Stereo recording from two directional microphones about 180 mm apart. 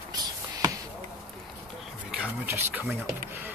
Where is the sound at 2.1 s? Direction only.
10° right (ahead or behind).